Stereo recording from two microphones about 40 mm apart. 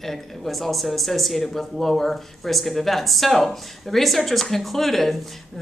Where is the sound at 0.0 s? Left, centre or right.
Centre.